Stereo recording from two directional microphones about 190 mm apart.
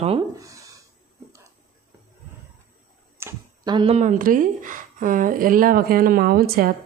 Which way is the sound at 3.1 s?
15° right (ahead or behind).